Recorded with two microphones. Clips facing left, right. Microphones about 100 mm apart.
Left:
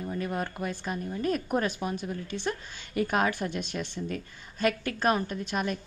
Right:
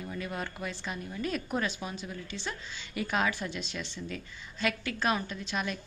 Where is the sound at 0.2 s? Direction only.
45° left (ahead or behind).